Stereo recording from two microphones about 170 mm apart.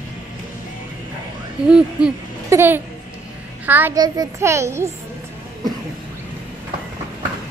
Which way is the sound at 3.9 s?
25° right (ahead or behind).